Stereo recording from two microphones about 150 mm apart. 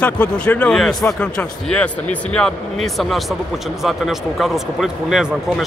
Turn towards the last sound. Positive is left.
turn(degrees=-5)  # may be behind; listen again after turning